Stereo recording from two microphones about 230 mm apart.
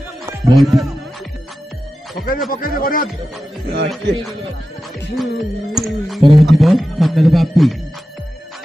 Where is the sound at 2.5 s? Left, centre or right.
Left.